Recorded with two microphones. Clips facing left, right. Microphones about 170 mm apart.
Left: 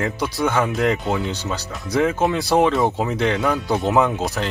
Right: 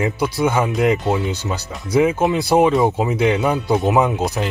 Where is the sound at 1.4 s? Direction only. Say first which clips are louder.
Right 1 dB; 15° right (ahead or behind).